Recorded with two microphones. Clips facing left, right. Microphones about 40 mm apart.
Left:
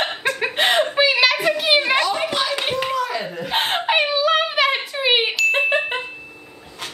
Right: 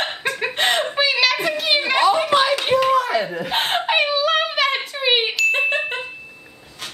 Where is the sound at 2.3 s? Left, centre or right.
Right.